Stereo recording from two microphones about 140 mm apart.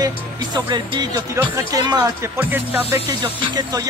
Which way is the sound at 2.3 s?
15° right (ahead or behind).